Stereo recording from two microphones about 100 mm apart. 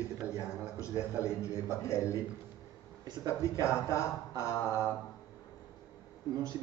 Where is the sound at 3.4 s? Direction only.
30° left (ahead or behind).